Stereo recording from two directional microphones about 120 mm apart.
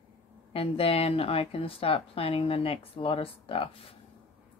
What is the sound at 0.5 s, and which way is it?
Speech, 50° left (ahead or behind).